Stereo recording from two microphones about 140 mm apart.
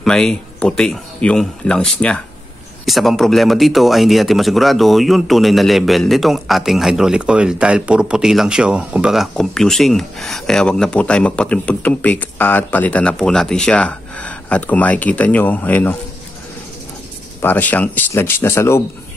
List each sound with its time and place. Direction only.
0.0 s speech: 5° left (ahead or behind)
17.4 s speech: 15° left (ahead or behind)